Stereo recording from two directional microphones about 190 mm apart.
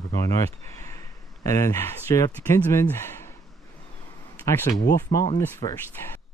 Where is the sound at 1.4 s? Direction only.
15° left (ahead or behind).